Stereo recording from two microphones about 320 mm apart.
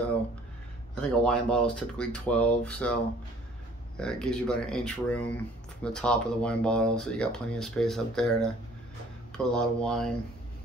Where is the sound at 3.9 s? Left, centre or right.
Centre.